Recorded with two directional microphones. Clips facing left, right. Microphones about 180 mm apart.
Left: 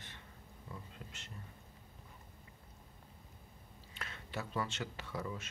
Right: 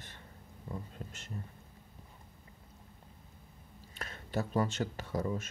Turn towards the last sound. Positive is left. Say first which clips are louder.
# right 7 dB
turn(degrees=-40)  # may be behind; listen again after turning